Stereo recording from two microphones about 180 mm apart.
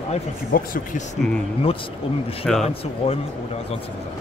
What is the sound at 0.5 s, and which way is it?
Speech, 50° left (ahead or behind).